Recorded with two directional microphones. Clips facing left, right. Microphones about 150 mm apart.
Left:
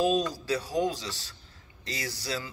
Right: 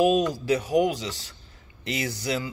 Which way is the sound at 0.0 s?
15° right (ahead or behind).